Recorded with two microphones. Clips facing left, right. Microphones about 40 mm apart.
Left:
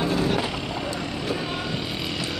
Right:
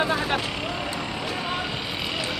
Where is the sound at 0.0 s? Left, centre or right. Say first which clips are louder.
Even; right.